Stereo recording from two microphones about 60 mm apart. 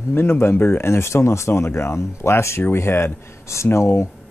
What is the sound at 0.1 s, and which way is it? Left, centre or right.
Speech, left.